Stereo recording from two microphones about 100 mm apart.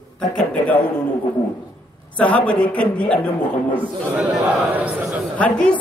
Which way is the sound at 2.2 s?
15° left (ahead or behind).